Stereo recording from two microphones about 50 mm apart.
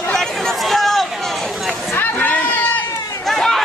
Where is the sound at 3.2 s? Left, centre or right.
Centre.